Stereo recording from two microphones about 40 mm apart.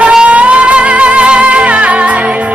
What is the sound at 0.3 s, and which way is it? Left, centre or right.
Music, right.